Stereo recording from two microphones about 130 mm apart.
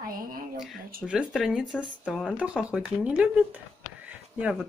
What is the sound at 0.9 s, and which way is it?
Speech, 5° right (ahead or behind).